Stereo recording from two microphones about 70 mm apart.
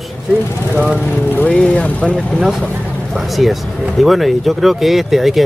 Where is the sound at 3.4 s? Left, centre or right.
Centre.